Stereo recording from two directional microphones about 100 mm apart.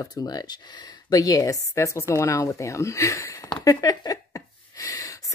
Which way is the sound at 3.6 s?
35° left (ahead or behind).